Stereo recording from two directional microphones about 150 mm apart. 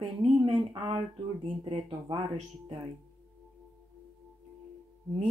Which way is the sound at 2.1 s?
30° right (ahead or behind).